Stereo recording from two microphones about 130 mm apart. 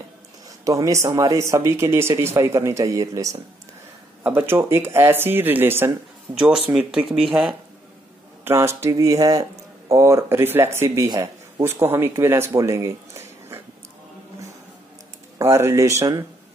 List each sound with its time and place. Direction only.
0.7 s speech: 25° right (ahead or behind); by 7.1 s 10° right (ahead or behind)
8.5 s speech: 20° right (ahead or behind)
11.1 s speech: 30° right (ahead or behind)
11.6 s speech: 20° right (ahead or behind)
15.3 s speech: 20° right (ahead or behind)